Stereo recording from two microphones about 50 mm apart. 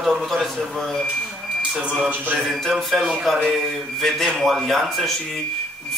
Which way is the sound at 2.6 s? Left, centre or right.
Centre.